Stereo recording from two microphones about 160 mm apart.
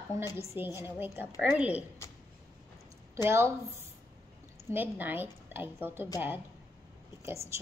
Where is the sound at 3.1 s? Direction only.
15° right (ahead or behind).